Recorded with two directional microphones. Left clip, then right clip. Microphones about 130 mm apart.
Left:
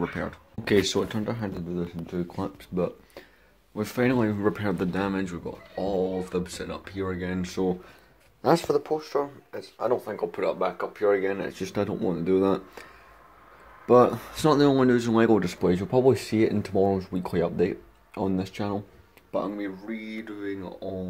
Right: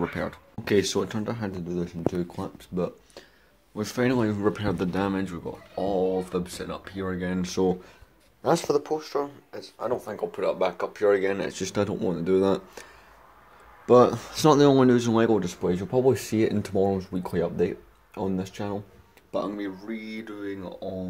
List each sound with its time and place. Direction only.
0.0 s speech: 5° right (ahead or behind)
0.7 s speech: 5° left (ahead or behind)
1.7 s speech: 20° right (ahead or behind)
2.3 s speech: 20° left (ahead or behind)
3.7 s speech: 5° left (ahead or behind); by 7.7 s 30° right (ahead or behind)
8.6 s speech: 5° right (ahead or behind)
8.9 s speech: 10° left (ahead or behind)
10.6 s speech: 20° right (ahead or behind)
12.1 s speech: 5° right (ahead or behind)
13.8 s speech: 20° right (ahead or behind)
15.7 s speech: 10° left (ahead or behind)
19.3 s speech: centre (ahead or behind)